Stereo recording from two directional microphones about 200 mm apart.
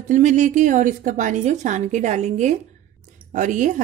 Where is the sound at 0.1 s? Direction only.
40° right (ahead or behind).